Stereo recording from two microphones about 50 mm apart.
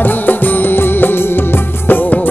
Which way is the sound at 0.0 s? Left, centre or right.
Left.